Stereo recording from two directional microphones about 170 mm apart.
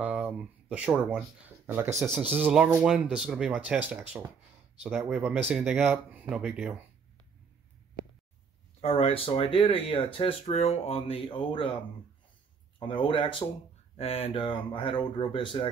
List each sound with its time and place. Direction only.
0.0 s a sound: 10° right (ahead or behind)
0.7 s speech: 10° right (ahead or behind)
8.8 s speech: 35° left (ahead or behind)
12.7 s speech: 30° left (ahead or behind)